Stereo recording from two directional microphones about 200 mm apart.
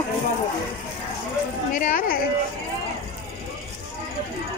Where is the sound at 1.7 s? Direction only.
40° left (ahead or behind).